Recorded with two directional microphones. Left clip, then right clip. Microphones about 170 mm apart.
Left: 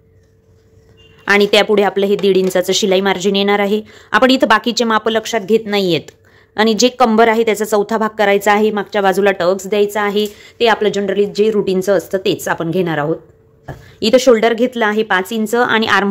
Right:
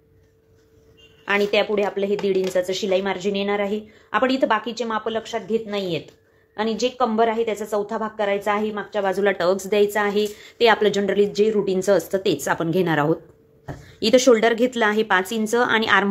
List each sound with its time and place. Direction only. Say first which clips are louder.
1.2 s a woman's voice: left 9 dB; 50° left (ahead or behind); by 9.1 s 80° left
9.2 s a woman's voice: left 6 dB; 30° left (ahead or behind)
11.4 s a woman's voice: left 5 dB; 30° left (ahead or behind); by 13.2 s 5° left (ahead or behind)
13.9 s a woman's voice: left 5 dB; 20° left (ahead or behind)